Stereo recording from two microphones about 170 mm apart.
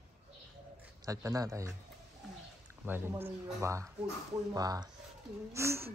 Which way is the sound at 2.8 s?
10° right (ahead or behind).